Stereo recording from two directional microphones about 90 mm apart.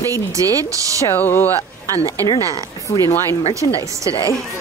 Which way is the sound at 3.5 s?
35° right (ahead or behind).